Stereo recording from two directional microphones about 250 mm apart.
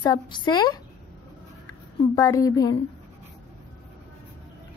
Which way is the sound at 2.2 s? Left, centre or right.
Centre.